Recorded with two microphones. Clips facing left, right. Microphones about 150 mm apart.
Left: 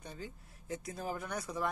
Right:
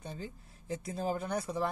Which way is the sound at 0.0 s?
30° right (ahead or behind).